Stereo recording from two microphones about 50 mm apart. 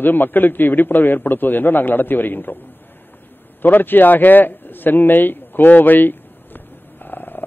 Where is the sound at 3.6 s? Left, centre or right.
Left.